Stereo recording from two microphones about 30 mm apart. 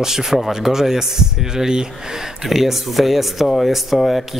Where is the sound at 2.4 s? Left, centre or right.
Centre.